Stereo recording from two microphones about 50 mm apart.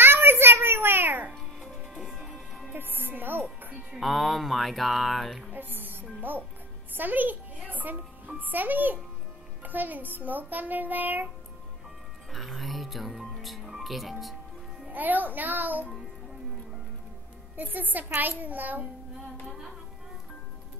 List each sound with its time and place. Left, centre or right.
0.0 s a sound: right
1.6 s music: centre
2.2 s music: centre
2.7 s speech: right
3.9 s speech: centre
5.5 s a child's voice: right
12.3 s speech: centre
14.9 s a child's voice: right
17.6 s a child's voice: right
19.4 s music: centre